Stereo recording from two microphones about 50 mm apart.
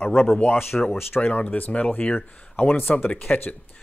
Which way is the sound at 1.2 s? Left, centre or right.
Left.